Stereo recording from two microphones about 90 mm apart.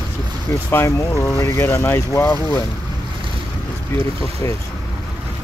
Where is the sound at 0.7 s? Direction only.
30° left (ahead or behind).